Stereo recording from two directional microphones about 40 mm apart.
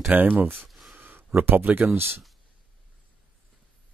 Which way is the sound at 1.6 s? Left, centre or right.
Right.